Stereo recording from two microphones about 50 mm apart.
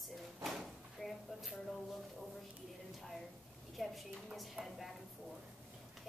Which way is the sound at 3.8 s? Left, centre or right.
Centre.